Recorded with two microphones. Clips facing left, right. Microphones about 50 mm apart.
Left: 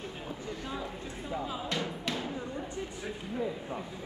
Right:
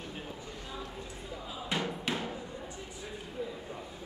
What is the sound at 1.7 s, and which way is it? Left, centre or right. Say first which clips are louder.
Music: right 2 dB; right.